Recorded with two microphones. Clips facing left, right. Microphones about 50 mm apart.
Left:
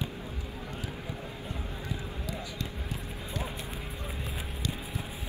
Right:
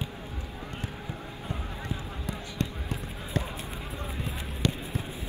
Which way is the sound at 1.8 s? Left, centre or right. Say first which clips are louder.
Right 2 dB; right.